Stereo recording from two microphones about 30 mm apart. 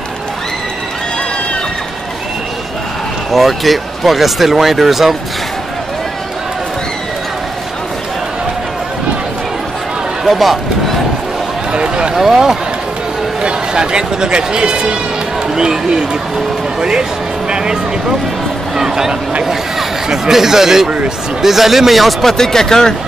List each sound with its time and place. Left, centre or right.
3.3 s speech: centre
10.2 s speech: centre
11.7 s run: right
12.2 s speech: centre
13.4 s speech: right
18.8 s speech: centre
22.2 s speech: centre